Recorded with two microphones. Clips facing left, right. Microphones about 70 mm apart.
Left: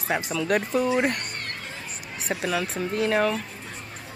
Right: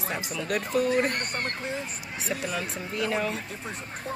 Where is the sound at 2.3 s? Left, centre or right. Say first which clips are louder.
Left 5 dB; left.